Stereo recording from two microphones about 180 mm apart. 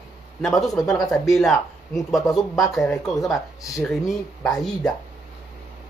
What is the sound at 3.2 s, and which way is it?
Speech, 20° left (ahead or behind).